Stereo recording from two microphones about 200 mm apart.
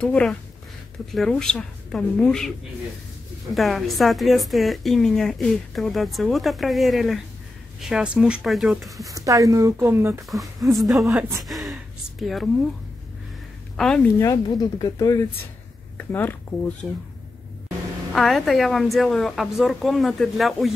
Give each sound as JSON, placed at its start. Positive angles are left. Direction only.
{"t": 0.0, "sound": "a woman's voice", "side_deg": 5}
{"t": 3.5, "sound": "a woman's voice", "side_deg": 0}
{"t": 9.0, "sound": "speech", "side_deg": -15}
{"t": 10.3, "sound": "a woman's voice", "side_deg": 0}
{"t": 13.7, "sound": "a woman's voice", "side_deg": 5}
{"t": 14.2, "sound": "speech", "side_deg": 20}
{"t": 18.1, "sound": "a woman's voice", "side_deg": 0}